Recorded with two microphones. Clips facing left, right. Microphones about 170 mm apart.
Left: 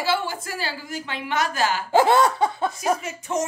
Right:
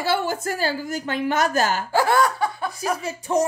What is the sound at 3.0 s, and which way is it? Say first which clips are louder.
Speech: right 4 dB; 35° right (ahead or behind).